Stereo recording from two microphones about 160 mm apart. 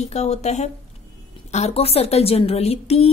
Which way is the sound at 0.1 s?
45° left (ahead or behind).